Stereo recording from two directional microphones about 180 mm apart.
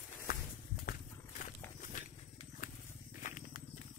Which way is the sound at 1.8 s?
45° left (ahead or behind).